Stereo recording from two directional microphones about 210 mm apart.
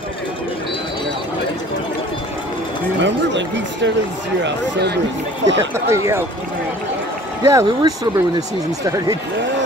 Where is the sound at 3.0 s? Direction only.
60° right (ahead or behind).